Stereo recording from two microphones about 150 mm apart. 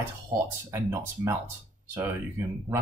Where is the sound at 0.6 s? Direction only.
20° right (ahead or behind).